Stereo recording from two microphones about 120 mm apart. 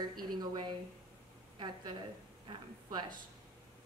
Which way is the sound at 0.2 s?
35° right (ahead or behind).